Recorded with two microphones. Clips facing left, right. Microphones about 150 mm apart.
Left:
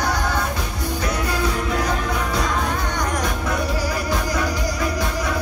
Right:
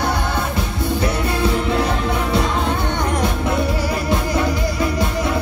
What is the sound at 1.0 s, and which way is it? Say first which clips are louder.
Music: right 2 dB; 25° right (ahead or behind).